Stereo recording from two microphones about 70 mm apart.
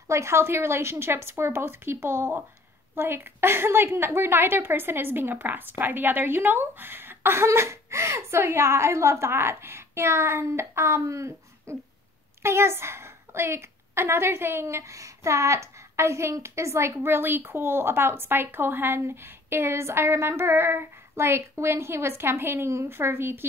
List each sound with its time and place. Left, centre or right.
0.1 s a woman's voice: right